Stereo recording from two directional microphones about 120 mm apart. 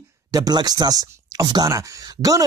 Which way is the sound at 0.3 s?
35° right (ahead or behind).